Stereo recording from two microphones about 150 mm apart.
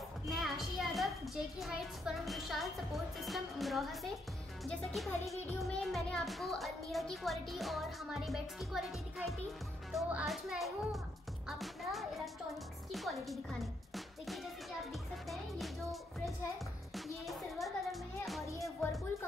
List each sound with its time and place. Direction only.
0.3 s a child's voice: centre (ahead or behind)
16.9 s music: centre (ahead or behind)
18.5 s speech: 20° left (ahead or behind)